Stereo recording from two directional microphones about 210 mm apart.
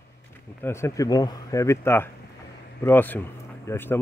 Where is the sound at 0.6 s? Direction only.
10° left (ahead or behind).